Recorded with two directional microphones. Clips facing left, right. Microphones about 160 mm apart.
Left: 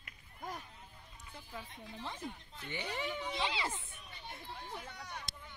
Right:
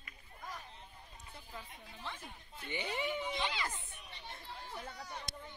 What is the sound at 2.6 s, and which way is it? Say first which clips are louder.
Speech: right 2 dB; 10° right (ahead or behind).